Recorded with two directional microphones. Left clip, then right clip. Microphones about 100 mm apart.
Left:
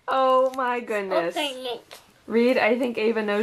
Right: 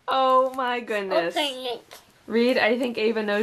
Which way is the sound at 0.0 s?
5° left (ahead or behind).